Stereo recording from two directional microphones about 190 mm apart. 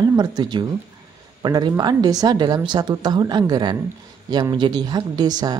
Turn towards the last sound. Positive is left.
turn(degrees=-20)  # may be behind; listen again after turning